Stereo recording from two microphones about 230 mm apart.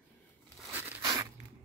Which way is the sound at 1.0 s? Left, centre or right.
Centre.